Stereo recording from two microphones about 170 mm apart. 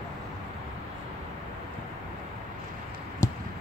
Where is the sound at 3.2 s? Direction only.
20° left (ahead or behind).